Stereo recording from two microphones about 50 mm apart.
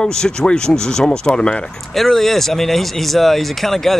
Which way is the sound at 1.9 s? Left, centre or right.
Centre.